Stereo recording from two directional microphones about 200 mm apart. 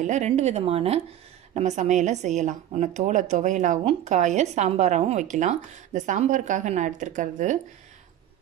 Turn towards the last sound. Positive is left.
turn(degrees=-40)  # may be behind; listen again after turning